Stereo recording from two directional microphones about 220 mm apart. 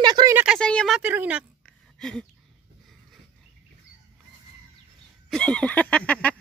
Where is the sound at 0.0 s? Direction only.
15° right (ahead or behind).